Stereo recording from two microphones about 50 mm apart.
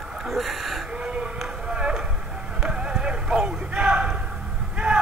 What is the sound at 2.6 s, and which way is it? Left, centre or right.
Music, centre.